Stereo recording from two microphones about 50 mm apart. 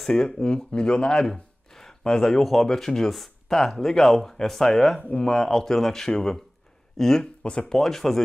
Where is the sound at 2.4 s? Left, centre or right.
Centre.